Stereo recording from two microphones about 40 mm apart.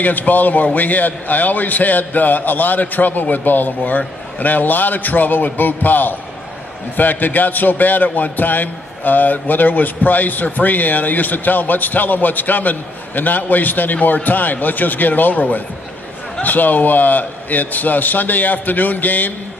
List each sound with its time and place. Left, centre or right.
0.0 s a man's voice: left